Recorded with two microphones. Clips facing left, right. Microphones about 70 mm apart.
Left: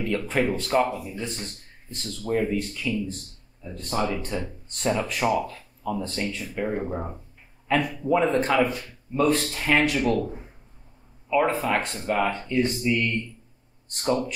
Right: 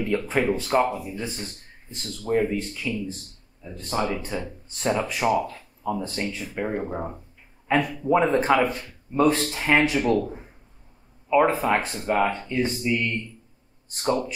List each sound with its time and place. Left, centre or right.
0.3 s speech: centre
5.3 s speech: centre
8.6 s speech: right
9.5 s speech: centre
11.8 s speech: centre